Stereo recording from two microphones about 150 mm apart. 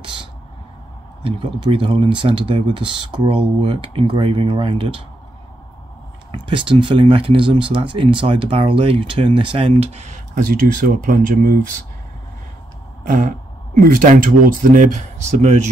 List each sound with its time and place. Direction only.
1.2 s speech: 35° right (ahead or behind)
6.3 s speech: 35° right (ahead or behind); by 11.6 s 80° right
13.0 s throat clearing: 65° right (ahead or behind)
13.8 s speech: 65° right (ahead or behind)